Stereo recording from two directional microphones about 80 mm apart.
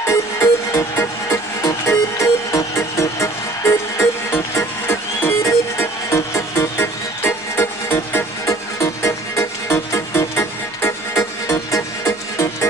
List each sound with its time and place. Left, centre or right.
0.0 s music: left